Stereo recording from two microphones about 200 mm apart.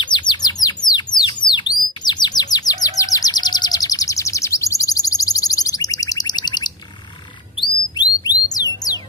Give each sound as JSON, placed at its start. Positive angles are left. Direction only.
{"t": 0.0, "sound": "bird", "side_deg": 25}
{"t": 2.0, "sound": "chirp", "side_deg": 20}
{"t": 7.6, "sound": "a sound", "side_deg": 20}